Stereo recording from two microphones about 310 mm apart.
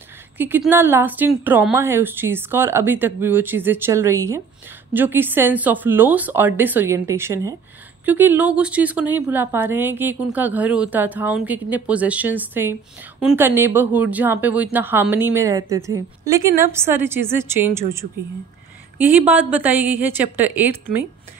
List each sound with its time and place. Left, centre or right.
0.4 s speech: centre